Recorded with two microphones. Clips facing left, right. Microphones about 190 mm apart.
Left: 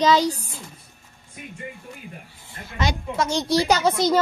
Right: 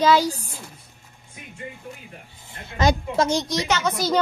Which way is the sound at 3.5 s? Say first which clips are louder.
Left 4 dB; 35° left (ahead or behind).